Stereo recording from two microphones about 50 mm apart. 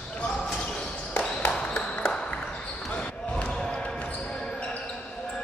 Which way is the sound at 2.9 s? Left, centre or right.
Left.